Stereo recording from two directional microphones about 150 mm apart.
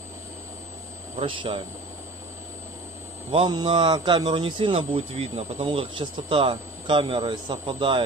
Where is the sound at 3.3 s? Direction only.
30° right (ahead or behind).